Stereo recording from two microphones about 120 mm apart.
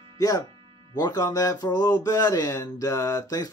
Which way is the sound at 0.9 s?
30° left (ahead or behind).